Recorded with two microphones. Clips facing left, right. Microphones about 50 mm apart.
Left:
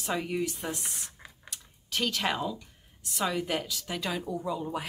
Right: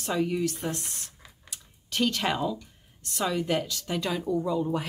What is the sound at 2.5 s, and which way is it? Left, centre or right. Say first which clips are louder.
Speech: right 5 dB; centre.